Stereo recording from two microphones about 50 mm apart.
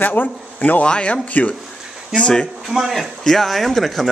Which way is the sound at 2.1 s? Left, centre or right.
Centre.